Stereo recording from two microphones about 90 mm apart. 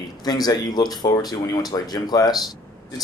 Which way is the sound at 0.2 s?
45° left (ahead or behind).